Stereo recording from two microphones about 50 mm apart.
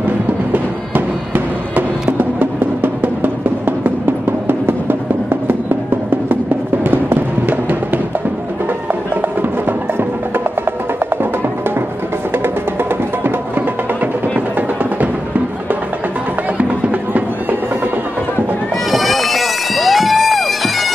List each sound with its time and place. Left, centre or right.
0.5 s music: right
6.8 s music: right
18.9 s bagpipes: centre